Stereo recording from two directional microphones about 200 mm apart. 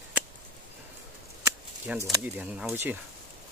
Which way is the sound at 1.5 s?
15° right (ahead or behind).